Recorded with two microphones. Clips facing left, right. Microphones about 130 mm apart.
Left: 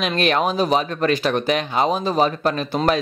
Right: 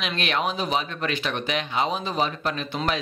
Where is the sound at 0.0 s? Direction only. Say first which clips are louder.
Left 7 dB; 45° left (ahead or behind).